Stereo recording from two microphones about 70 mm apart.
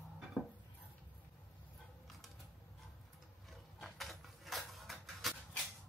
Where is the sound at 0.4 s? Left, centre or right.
Centre.